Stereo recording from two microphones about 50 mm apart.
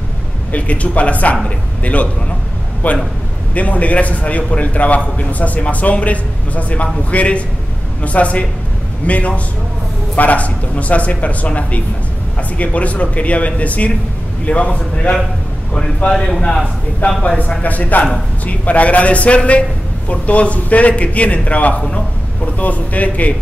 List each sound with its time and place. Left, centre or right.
0.5 s a man's voice: left
15.7 s a man's voice: centre
17.2 s a man's voice: left